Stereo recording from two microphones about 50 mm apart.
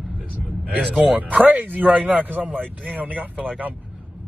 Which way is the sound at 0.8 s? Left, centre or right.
Right.